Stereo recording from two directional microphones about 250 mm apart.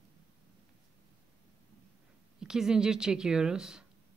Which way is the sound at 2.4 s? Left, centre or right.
Centre.